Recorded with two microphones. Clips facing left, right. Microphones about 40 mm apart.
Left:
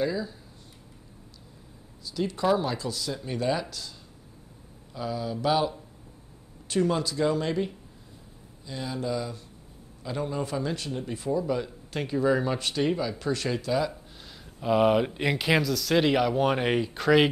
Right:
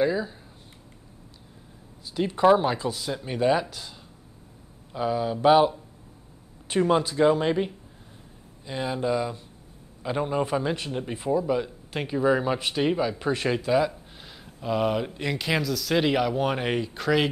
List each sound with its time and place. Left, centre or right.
0.0 s a man's voice: right
2.0 s a man's voice: right
4.9 s a man's voice: right
14.6 s speech: centre